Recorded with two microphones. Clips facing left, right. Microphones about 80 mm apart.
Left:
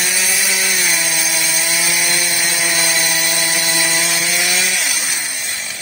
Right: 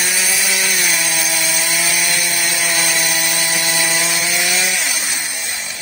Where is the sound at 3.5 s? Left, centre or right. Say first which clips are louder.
Even; centre.